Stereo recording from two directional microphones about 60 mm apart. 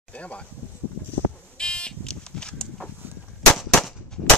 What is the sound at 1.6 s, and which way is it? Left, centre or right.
Buzzer, centre.